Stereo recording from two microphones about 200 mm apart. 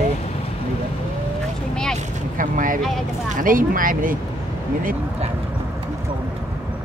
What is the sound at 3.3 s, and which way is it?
Speech, 45° right (ahead or behind).